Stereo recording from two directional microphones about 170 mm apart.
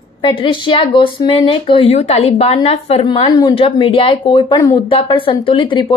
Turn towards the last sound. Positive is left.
turn(degrees=30)  # may be behind; listen again after turning